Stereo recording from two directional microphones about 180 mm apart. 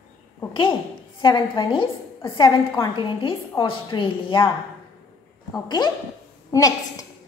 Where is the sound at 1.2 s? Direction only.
25° left (ahead or behind).